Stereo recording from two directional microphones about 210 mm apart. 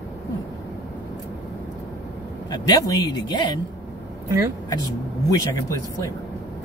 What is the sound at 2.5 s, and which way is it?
A man's voice, 15° left (ahead or behind).